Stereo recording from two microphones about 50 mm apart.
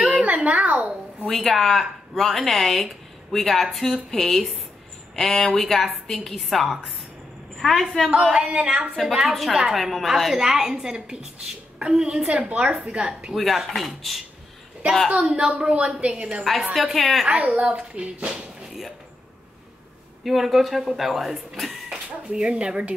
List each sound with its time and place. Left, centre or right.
0.2 s a woman's voice: right
1.2 s speech: centre
8.1 s a woman's voice: centre
12.4 s speech: right
12.7 s a woman's voice: centre
13.3 s speech: centre
15.2 s speech: right
16.7 s speech: centre
17.3 s speech: right
20.2 s speech: centre
21.6 s speech: centre